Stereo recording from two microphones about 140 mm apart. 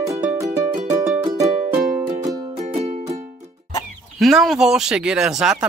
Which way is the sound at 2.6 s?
50° right (ahead or behind).